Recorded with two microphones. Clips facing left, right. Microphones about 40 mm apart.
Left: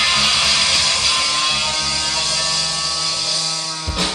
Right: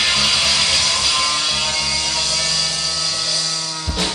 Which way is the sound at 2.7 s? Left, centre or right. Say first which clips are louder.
Even; centre.